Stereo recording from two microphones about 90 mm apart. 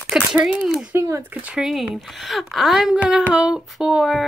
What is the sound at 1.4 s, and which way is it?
Speech, 10° right (ahead or behind).